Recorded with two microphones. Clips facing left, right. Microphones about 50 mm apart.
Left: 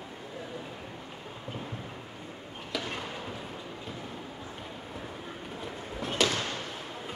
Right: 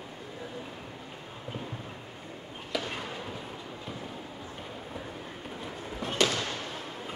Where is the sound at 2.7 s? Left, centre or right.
Centre.